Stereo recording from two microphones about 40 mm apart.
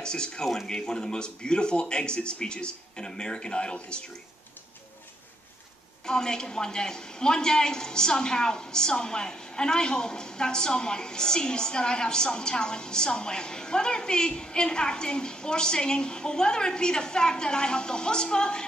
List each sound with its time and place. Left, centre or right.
0.0 s a woman's voice: centre
6.0 s a woman's voice: centre